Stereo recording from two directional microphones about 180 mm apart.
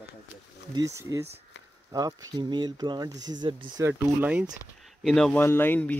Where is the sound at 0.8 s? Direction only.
15° right (ahead or behind).